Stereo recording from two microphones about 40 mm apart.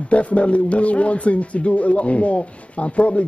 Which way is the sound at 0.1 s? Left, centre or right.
Left.